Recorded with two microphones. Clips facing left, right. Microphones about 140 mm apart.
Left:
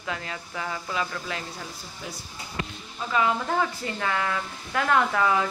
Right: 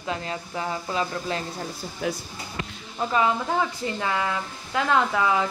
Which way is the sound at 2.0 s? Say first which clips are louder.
Right 11 dB; 70° right (ahead or behind).